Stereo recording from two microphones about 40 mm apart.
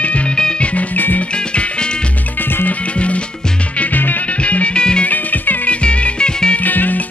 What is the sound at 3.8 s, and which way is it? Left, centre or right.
Music, left.